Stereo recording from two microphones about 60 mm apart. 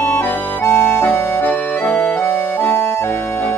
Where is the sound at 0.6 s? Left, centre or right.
Left.